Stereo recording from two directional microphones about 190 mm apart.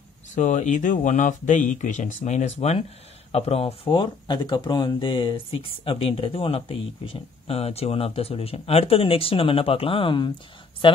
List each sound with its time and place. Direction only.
0.4 s speech: 40° left (ahead or behind)